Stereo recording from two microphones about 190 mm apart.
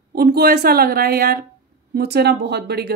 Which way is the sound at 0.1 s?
55° right (ahead or behind).